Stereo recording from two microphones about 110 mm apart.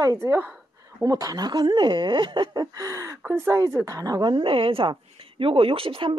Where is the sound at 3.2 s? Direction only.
20° right (ahead or behind).